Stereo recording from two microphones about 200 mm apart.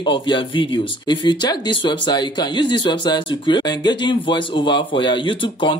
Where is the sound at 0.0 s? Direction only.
25° left (ahead or behind).